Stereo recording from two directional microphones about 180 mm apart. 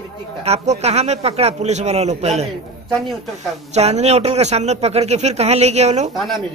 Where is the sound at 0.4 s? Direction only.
35° right (ahead or behind).